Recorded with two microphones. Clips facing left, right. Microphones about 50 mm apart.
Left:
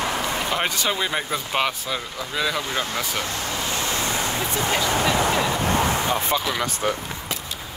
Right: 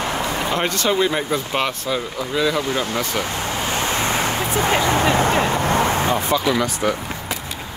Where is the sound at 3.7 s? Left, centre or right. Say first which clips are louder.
Right 5 dB; right.